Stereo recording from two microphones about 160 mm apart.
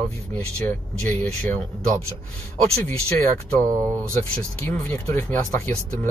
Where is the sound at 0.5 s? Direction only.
10° left (ahead or behind).